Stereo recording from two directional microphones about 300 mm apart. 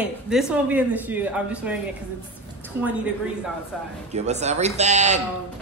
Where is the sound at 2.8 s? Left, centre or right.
Centre.